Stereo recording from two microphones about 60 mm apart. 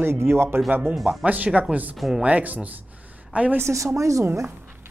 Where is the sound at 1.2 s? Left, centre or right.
Right.